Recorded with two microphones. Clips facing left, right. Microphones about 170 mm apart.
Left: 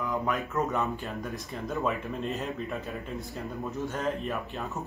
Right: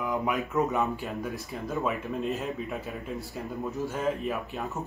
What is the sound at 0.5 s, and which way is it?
Speech, centre (ahead or behind).